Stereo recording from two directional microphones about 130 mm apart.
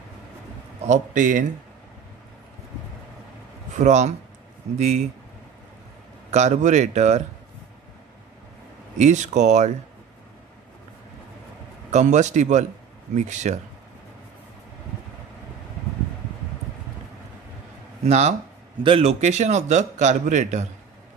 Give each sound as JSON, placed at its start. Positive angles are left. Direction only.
{"t": 0.8, "sound": "speech", "side_deg": -70}
{"t": 3.7, "sound": "speech", "side_deg": -65}
{"t": 6.3, "sound": "speech", "side_deg": -65}
{"t": 8.9, "sound": "speech", "side_deg": -65}
{"t": 11.9, "sound": "speech", "side_deg": -65}
{"t": 18.0, "sound": "speech", "side_deg": -60}
{"t": 18.8, "sound": "speech", "side_deg": -45}